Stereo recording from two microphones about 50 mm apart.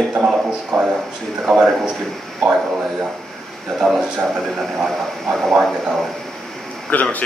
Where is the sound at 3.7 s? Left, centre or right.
Centre.